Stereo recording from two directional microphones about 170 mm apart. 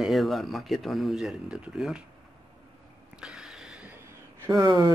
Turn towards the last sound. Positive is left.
turn(degrees=-20)  # may be behind; listen again after turning